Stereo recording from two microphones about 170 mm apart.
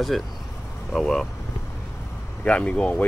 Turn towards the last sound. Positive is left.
turn(degrees=5)  # may be behind; listen again after turning